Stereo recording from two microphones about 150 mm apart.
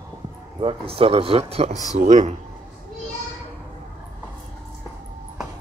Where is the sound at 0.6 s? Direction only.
35° right (ahead or behind).